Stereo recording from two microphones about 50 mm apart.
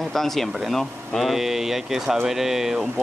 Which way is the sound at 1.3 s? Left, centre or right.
Centre.